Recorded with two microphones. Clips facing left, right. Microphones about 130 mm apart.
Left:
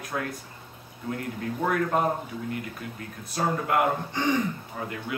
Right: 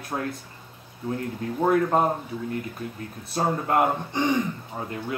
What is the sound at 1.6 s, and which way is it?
Speech, 30° right (ahead or behind).